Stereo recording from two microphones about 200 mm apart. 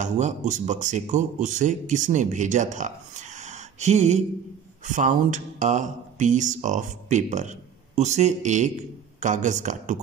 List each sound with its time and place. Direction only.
0.0 s a man's voice: 40° right (ahead or behind)